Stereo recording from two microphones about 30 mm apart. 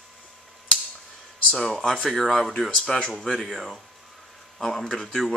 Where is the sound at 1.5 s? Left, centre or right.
Centre.